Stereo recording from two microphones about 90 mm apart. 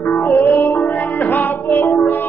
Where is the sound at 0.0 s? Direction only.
20° left (ahead or behind).